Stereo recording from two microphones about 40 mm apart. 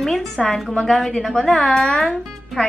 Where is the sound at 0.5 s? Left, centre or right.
Centre.